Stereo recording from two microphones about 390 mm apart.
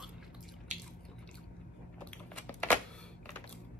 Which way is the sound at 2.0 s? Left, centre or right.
Centre.